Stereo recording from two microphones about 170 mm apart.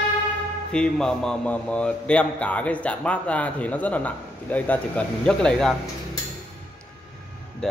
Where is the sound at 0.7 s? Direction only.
5° left (ahead or behind).